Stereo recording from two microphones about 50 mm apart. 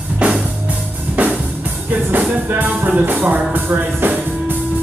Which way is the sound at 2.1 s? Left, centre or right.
Right.